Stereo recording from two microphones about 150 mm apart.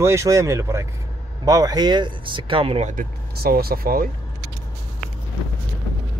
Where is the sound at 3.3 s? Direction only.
90° right.